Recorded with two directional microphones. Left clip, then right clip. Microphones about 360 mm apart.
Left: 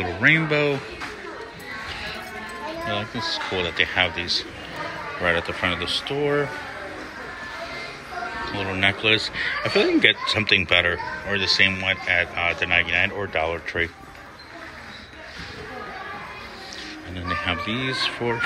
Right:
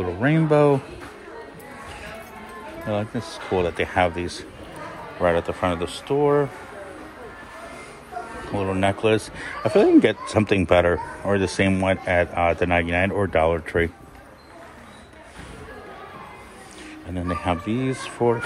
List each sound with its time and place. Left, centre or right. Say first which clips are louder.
0.2 s speech: even; centre
3.5 s speech: right 2 dB; centre
8.5 s speech: even; centre
17.1 s speech: right 1 dB; centre